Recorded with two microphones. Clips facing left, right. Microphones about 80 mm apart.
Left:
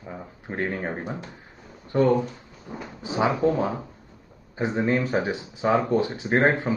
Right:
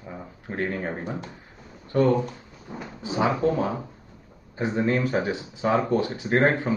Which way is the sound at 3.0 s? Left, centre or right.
Left.